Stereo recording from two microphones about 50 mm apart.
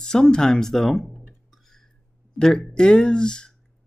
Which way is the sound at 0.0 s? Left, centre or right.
Centre.